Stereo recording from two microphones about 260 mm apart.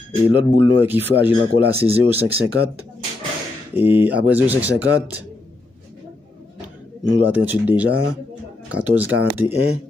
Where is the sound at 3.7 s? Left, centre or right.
Centre.